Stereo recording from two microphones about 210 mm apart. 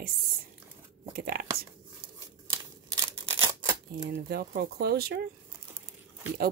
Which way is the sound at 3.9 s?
45° right (ahead or behind).